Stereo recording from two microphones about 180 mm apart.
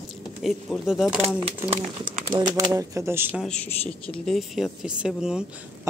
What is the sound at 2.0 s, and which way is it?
Speech, 50° right (ahead or behind).